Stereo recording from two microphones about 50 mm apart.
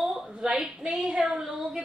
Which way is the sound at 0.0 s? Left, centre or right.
Centre.